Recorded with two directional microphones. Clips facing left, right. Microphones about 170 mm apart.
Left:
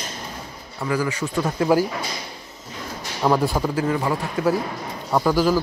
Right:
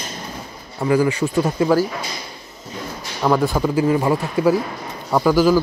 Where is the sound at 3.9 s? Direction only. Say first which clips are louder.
Right 6 dB; 20° right (ahead or behind).